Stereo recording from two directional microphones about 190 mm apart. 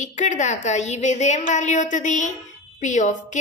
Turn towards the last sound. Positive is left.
turn(degrees=40)  # may be behind; listen again after turning